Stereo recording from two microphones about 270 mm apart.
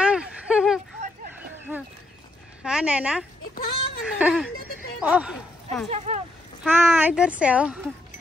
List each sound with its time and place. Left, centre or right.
0.0 s a sound: centre
2.6 s a woman's voice: centre
5.9 s speech: right
6.6 s speech: centre